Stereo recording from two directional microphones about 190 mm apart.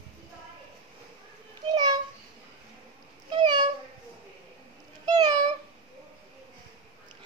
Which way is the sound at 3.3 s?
25° right (ahead or behind).